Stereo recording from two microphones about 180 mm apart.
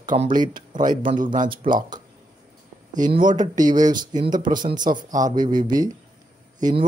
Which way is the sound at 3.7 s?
25° right (ahead or behind).